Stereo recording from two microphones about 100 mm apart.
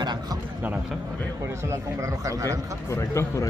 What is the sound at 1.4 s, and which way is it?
Speech, 30° right (ahead or behind).